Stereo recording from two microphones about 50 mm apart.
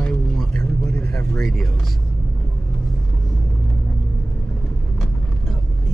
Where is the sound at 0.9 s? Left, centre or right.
Left.